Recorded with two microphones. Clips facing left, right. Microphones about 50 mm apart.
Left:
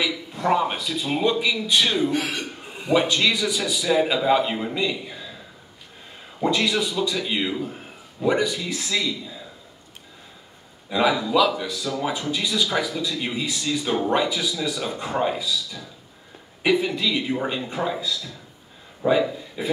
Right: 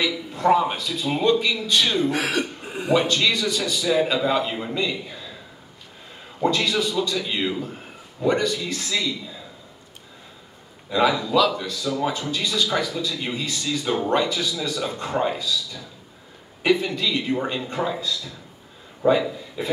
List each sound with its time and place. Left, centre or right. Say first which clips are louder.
0.0 s a man's voice: right 3 dB; centre
2.0 s speech: right 2 dB; right
2.9 s speech: even; centre
6.4 s speech: even; centre
10.9 s a man's voice: even; centre